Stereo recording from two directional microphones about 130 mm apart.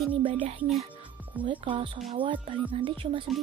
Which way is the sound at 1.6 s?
40° right (ahead or behind).